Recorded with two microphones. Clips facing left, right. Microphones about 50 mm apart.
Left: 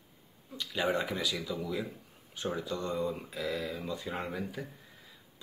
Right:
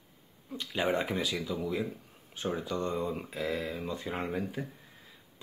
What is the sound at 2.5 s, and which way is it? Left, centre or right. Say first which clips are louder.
Speech: right 1 dB; right.